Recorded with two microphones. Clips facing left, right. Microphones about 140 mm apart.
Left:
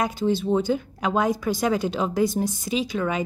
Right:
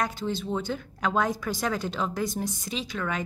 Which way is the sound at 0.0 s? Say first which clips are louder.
Left 6 dB; 10° left (ahead or behind).